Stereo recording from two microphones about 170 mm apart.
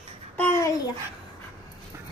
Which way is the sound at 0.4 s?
15° left (ahead or behind).